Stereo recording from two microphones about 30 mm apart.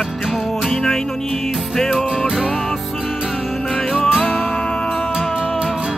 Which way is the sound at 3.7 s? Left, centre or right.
Left.